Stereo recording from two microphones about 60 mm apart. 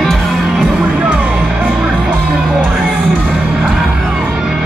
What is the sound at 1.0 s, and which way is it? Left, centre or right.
Music, right.